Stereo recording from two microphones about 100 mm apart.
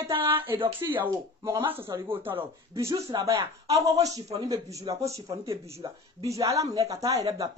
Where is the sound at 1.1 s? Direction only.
40° right (ahead or behind).